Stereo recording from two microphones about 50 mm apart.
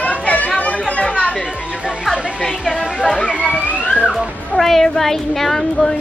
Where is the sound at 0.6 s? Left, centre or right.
Left.